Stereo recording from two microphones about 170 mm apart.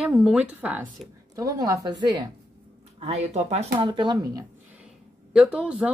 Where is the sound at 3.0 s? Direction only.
40° right (ahead or behind).